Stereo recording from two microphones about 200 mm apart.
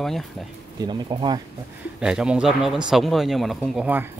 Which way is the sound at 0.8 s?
20° right (ahead or behind).